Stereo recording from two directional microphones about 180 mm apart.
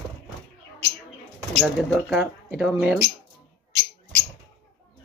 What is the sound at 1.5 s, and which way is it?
Speech, 5° left (ahead or behind).